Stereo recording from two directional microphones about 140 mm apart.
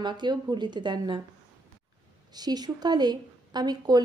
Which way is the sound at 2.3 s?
30° right (ahead or behind).